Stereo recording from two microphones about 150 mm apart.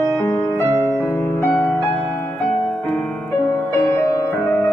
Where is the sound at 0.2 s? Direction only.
15° left (ahead or behind).